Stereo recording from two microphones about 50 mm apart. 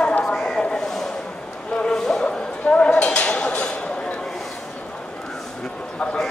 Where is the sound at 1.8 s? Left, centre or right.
Centre.